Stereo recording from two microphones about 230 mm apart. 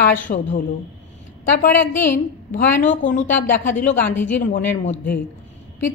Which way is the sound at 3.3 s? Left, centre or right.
Centre.